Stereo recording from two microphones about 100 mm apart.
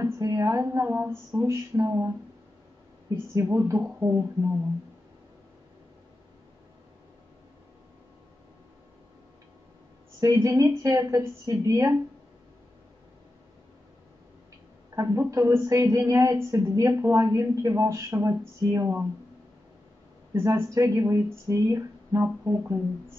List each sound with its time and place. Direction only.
0.0 s a woman's voice: 35° right (ahead or behind)
3.3 s a woman's voice: 30° right (ahead or behind)
10.2 s a woman's voice: 30° right (ahead or behind)
15.0 s a woman's voice: 30° right (ahead or behind)
20.3 s speech: 30° right (ahead or behind)